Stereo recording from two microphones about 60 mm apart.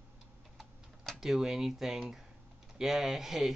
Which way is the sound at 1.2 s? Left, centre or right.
Centre.